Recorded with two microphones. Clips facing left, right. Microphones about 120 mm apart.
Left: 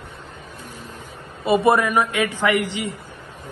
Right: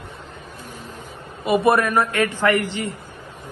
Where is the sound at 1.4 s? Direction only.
25° left (ahead or behind).